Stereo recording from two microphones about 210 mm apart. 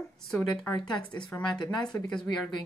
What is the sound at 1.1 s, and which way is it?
Speech, 5° left (ahead or behind).